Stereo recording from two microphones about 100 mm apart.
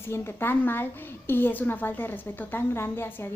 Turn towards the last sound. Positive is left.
turn(degrees=25)  # may be behind; listen again after turning